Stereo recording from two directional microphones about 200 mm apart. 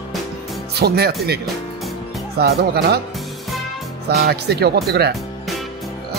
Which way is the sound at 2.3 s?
50° right (ahead or behind).